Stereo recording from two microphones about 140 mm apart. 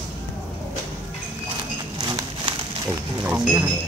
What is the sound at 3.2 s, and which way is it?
Speech, 15° right (ahead or behind).